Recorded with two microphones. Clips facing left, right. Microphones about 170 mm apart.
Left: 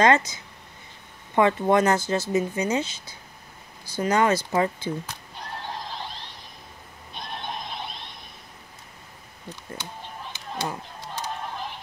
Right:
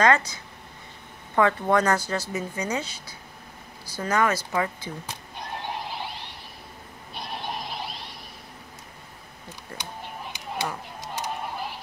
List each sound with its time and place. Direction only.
0.0 s speech: 20° left (ahead or behind)
5.3 s neigh: 15° right (ahead or behind)
9.8 s a sound: 15° right (ahead or behind)
11.0 s music: 10° right (ahead or behind)